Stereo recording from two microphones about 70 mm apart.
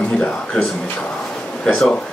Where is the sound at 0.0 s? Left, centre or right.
Centre.